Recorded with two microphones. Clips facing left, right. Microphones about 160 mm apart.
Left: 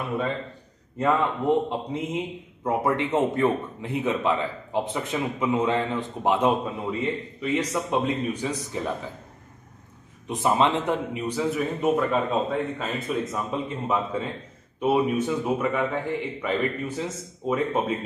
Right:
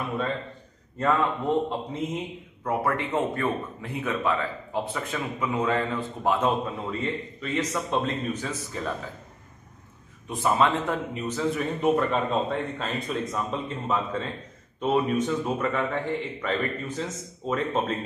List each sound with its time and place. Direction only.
0.9 s a man's voice: 15° left (ahead or behind)
10.2 s a man's voice: 20° left (ahead or behind)